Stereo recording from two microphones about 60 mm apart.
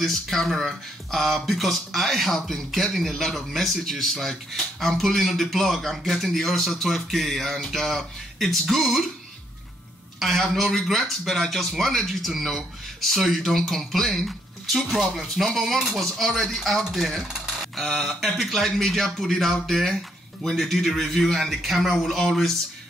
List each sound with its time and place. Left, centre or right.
0.0 s speech: centre
10.1 s speech: centre